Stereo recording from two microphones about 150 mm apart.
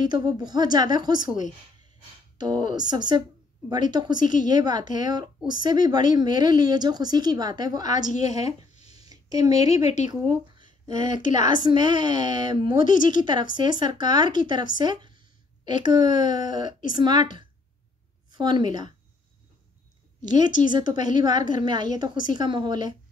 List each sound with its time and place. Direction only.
0.0 s speech: 30° right (ahead or behind)
7.9 s a woman's voice: 55° left (ahead or behind)
9.1 s a woman's voice: 25° right (ahead or behind)
11.2 s a woman's voice: 55° left (ahead or behind)
11.5 s speech: 30° right (ahead or behind)
12.7 s a woman's voice: 60° left (ahead or behind)
13.1 s a woman's voice: 30° right (ahead or behind)
20.2 s speech: 30° right (ahead or behind)